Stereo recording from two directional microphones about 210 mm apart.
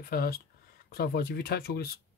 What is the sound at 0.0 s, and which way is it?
Speech, 45° left (ahead or behind).